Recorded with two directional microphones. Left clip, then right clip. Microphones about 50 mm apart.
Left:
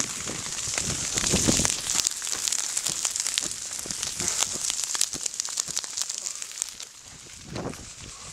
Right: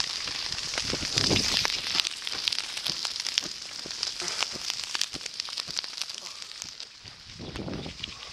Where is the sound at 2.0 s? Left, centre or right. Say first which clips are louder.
Even; left.